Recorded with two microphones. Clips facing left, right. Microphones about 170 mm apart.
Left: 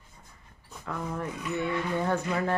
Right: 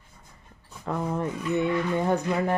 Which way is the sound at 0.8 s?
25° right (ahead or behind).